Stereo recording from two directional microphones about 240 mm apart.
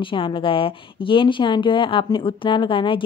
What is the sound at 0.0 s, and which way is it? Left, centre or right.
A woman's voice, left.